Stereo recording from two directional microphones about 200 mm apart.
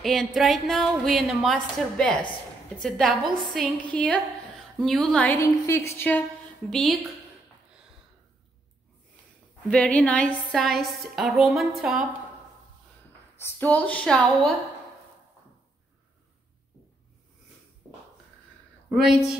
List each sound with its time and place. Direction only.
0.0 s a woman's voice: centre (ahead or behind)
9.7 s a woman's voice: 5° left (ahead or behind)
13.4 s a woman's voice: 10° left (ahead or behind)
17.8 s a sound: 20° right (ahead or behind)
18.9 s a woman's voice: centre (ahead or behind)